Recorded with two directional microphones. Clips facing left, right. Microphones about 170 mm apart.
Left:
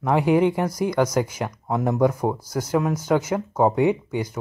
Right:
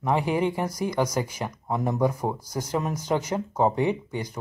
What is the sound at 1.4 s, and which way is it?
Speech, 70° left (ahead or behind).